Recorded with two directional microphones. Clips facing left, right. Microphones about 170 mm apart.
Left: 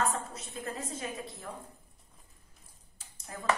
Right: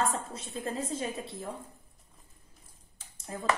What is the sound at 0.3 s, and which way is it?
A woman's voice, 30° right (ahead or behind).